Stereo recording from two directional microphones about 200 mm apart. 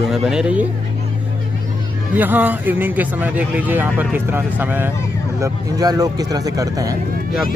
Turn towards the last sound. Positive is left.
turn(degrees=-15)  # may be behind; listen again after turning